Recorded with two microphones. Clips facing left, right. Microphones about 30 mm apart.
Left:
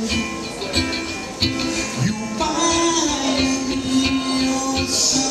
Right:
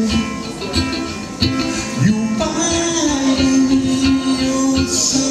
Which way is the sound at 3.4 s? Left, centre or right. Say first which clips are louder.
Right 7 dB; centre.